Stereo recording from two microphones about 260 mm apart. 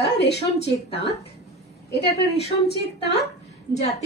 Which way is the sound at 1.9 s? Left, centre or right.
Left.